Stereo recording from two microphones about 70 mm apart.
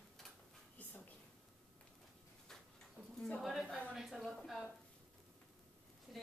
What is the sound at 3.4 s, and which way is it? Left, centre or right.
Speech, centre.